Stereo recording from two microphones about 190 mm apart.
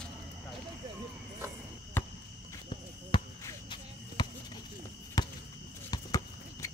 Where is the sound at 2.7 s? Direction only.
25° left (ahead or behind).